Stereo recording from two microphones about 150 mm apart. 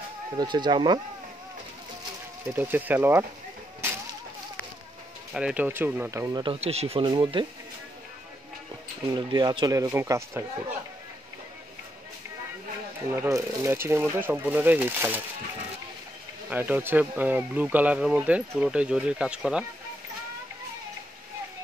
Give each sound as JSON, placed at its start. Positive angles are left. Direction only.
{"t": 0.4, "sound": "speech", "side_deg": -30}
{"t": 2.5, "sound": "speech", "side_deg": -15}
{"t": 5.3, "sound": "speech", "side_deg": -5}
{"t": 6.4, "sound": "speech", "side_deg": -40}
{"t": 7.1, "sound": "speech", "side_deg": -30}
{"t": 9.1, "sound": "speech", "side_deg": -30}
{"t": 13.1, "sound": "speech", "side_deg": -15}
{"t": 16.4, "sound": "speech", "side_deg": -10}